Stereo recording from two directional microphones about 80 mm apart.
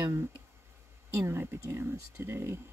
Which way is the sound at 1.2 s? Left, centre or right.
Right.